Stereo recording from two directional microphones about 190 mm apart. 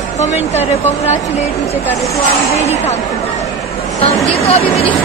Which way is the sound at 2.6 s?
35° left (ahead or behind).